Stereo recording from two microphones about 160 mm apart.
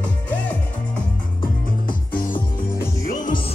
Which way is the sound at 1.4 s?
60° left (ahead or behind).